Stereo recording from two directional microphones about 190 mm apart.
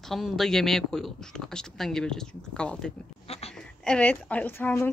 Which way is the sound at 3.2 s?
30° left (ahead or behind).